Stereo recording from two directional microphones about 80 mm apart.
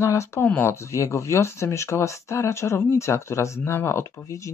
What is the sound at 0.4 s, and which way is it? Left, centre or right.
Speech, left.